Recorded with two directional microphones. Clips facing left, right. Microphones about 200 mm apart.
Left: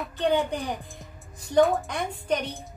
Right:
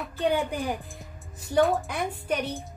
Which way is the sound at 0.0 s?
5° right (ahead or behind).